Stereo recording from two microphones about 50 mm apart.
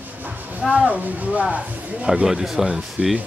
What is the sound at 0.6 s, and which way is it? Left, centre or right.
Speech, right.